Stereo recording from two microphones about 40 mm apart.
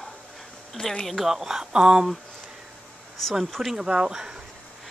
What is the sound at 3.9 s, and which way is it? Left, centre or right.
Speech, right.